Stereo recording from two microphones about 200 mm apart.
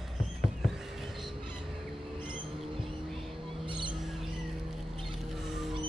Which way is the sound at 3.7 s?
25° right (ahead or behind).